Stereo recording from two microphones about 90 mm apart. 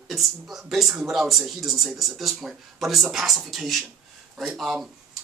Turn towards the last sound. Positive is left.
turn(degrees=0)  # may be behind; listen again after turning